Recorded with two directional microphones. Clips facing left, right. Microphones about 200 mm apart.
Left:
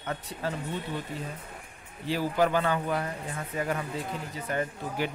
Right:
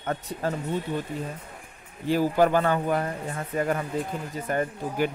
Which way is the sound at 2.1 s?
45° right (ahead or behind).